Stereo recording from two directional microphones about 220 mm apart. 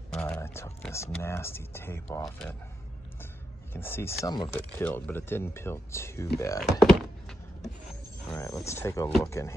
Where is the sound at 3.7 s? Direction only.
10° left (ahead or behind).